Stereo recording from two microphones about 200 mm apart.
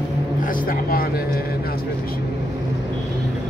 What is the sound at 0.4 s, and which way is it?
Vehicle, 45° left (ahead or behind).